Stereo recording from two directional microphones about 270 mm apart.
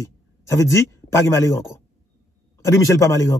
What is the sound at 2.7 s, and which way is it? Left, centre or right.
Speech, centre.